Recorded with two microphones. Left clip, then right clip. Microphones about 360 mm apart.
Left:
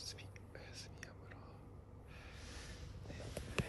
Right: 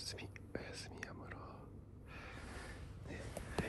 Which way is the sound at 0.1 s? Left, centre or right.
Right.